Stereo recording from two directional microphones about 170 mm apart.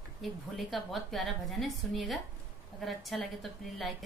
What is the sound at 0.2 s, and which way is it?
Female singing, centre (ahead or behind).